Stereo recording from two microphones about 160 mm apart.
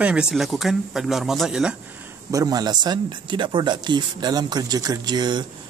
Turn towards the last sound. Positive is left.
turn(degrees=-25)  # may be behind; listen again after turning